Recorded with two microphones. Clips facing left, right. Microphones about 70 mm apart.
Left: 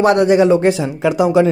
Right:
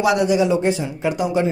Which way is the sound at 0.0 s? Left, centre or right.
Left.